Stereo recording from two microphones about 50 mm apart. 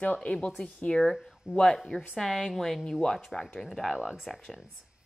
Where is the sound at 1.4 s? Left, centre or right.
Centre.